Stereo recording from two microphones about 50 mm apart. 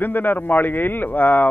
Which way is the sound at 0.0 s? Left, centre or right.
Left.